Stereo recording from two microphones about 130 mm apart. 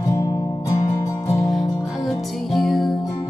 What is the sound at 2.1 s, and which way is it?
Music, centre (ahead or behind).